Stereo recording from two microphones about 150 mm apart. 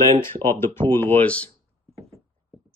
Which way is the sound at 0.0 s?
20° left (ahead or behind).